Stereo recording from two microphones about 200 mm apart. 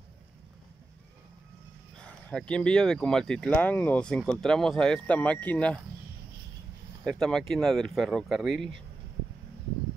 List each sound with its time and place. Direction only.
2.0 s speech: 5° left (ahead or behind)
7.1 s speech: centre (ahead or behind)